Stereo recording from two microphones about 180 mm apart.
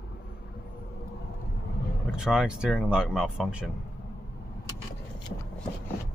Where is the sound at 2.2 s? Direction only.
5° right (ahead or behind).